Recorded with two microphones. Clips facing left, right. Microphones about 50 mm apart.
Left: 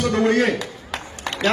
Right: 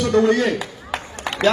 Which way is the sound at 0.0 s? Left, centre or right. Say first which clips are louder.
Right 2 dB; left.